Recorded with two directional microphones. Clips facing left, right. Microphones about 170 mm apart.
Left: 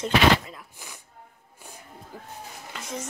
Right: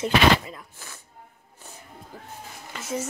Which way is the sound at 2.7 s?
5° right (ahead or behind).